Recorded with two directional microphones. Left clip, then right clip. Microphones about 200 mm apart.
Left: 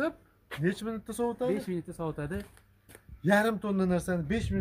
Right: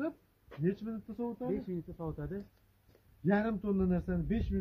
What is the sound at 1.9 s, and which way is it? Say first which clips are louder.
Speech: left 6 dB; 55° left (ahead or behind).